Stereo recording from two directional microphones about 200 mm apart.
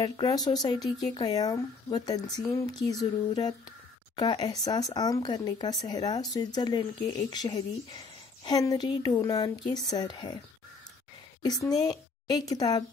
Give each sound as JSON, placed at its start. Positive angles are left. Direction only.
{"t": 0.0, "sound": "speech", "side_deg": 20}
{"t": 11.4, "sound": "speech", "side_deg": 20}